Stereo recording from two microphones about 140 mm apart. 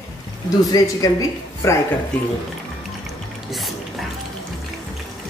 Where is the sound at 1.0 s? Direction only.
25° left (ahead or behind).